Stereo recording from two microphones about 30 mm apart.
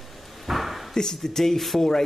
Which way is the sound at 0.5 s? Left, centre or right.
Centre.